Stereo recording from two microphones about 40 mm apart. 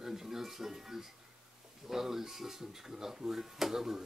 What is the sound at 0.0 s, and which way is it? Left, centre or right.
Speech, centre.